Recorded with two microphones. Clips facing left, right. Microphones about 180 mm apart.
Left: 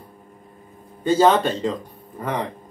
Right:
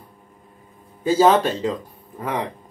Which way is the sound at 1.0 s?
5° right (ahead or behind).